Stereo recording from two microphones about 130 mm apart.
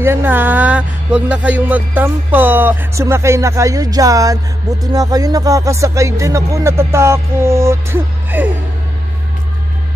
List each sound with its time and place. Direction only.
0.0 s speech: 15° right (ahead or behind)